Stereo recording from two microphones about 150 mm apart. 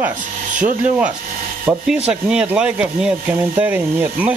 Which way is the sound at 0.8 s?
10° right (ahead or behind).